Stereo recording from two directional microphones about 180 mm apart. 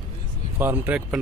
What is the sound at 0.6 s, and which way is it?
Speech, 10° right (ahead or behind).